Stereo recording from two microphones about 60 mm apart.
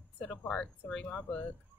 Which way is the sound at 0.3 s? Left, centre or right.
Left.